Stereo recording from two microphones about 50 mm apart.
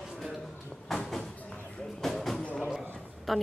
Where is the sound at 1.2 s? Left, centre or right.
Left.